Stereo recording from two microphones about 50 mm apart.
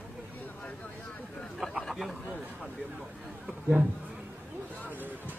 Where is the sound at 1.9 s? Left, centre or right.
Centre.